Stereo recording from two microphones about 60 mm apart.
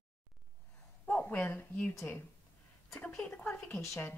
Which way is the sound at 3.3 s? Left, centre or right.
Left.